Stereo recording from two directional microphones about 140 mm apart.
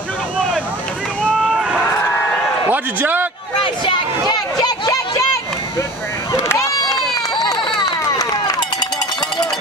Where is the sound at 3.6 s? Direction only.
35° left (ahead or behind).